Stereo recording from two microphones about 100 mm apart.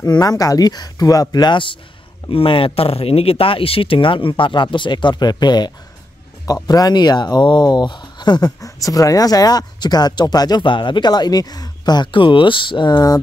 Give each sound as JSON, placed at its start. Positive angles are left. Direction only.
{"t": 0.0, "sound": "speech", "side_deg": 40}